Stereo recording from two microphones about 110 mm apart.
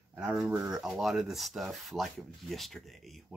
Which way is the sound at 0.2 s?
5° right (ahead or behind).